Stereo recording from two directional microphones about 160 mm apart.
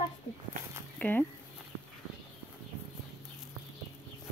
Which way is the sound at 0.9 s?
10° left (ahead or behind).